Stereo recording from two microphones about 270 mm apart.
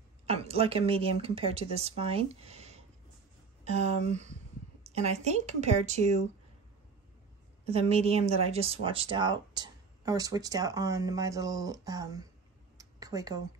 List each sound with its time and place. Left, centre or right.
0.3 s a woman's voice: right
7.6 s speech: right
12.7 s a sound: centre